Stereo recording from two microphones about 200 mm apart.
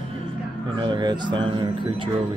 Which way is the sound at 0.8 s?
25° right (ahead or behind).